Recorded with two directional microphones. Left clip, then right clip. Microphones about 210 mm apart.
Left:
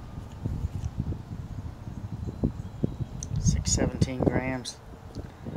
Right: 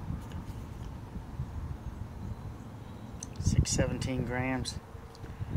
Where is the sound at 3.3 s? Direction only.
Centre (ahead or behind).